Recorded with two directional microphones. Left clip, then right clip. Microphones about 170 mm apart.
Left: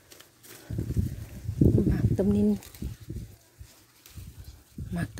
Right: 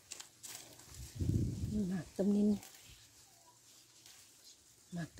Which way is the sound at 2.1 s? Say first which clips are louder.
Left 7 dB; 50° left (ahead or behind).